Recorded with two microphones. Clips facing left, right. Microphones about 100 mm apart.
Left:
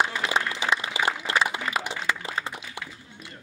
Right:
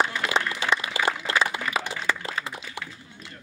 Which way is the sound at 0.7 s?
20° left (ahead or behind).